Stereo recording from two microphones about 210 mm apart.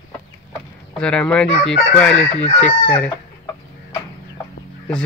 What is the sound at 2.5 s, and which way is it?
Chicken, 5° left (ahead or behind).